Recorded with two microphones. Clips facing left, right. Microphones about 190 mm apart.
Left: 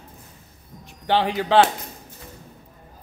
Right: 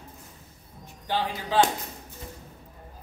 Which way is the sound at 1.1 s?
75° left (ahead or behind).